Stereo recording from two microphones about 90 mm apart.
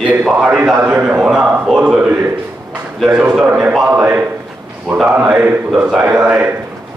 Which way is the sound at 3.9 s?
20° right (ahead or behind).